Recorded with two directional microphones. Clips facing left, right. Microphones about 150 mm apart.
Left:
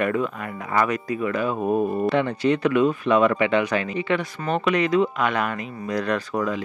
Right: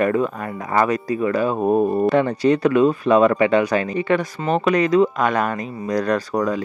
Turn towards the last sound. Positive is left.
turn(degrees=-40)  # may be behind; listen again after turning